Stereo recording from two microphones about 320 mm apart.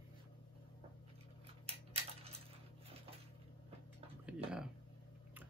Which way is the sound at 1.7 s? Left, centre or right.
Centre.